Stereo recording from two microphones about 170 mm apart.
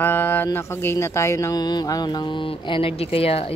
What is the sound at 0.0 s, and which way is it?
Speech, 10° left (ahead or behind).